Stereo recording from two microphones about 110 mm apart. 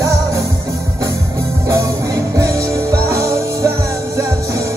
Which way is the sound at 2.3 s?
30° right (ahead or behind).